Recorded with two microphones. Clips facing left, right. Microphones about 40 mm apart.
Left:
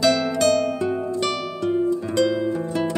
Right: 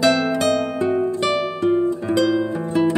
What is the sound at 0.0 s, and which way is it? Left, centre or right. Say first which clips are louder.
Harp: right 1 dB; right.